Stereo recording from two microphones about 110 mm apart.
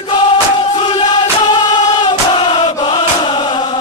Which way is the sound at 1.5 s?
45° left (ahead or behind).